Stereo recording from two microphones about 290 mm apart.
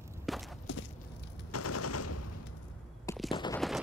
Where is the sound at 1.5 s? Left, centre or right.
Left.